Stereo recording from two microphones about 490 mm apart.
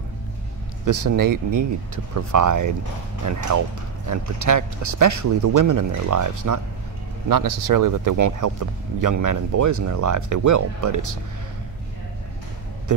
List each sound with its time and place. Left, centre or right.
0.8 s speech: right